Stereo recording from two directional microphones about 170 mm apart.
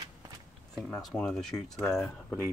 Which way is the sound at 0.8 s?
5° left (ahead or behind).